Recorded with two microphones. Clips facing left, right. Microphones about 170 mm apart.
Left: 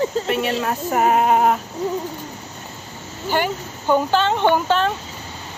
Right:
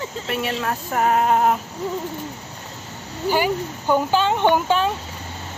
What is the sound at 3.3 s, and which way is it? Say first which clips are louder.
Speech: right 1 dB; 5° right (ahead or behind).